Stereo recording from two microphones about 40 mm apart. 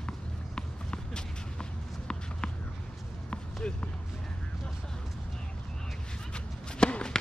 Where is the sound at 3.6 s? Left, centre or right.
Left.